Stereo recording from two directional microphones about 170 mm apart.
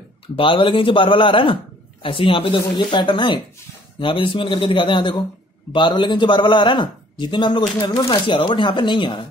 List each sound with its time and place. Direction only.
0.4 s a man's voice: 30° left (ahead or behind)